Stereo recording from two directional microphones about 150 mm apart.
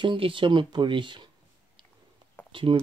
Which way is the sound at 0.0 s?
35° right (ahead or behind).